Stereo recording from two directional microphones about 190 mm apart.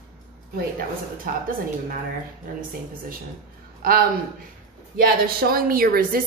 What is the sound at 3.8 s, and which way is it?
A man's voice, 50° right (ahead or behind).